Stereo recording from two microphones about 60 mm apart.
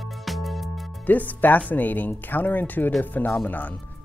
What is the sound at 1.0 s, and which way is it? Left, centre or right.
Speech, left.